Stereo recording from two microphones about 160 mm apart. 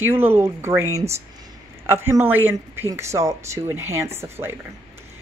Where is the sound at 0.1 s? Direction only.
15° right (ahead or behind).